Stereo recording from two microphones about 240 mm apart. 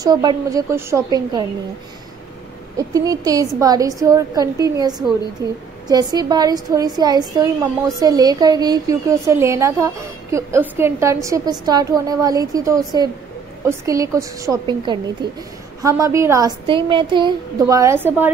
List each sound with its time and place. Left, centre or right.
0.0 s a woman's voice: centre
2.9 s a woman's voice: centre